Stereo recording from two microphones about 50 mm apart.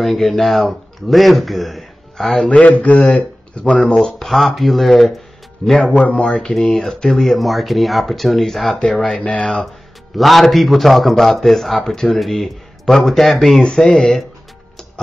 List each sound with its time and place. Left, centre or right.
0.0 s speech: centre
2.5 s a man's voice: left
3.8 s speech: centre
5.9 s a man's voice: left
6.4 s speech: centre
9.2 s a man's voice: left
10.1 s speech: centre
11.8 s speech: centre
12.1 s speech: centre
13.6 s speech: centre